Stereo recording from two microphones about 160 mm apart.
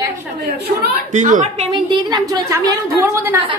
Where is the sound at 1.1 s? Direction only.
50° right (ahead or behind).